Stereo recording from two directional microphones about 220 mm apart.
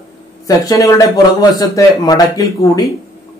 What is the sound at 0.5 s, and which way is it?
A man's voice, 15° left (ahead or behind).